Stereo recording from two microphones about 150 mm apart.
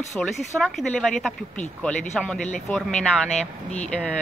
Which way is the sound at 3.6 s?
50° left (ahead or behind).